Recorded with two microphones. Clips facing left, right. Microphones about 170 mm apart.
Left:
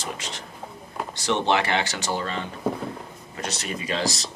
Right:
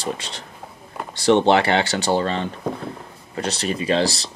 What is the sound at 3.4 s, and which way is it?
Speech, 30° right (ahead or behind).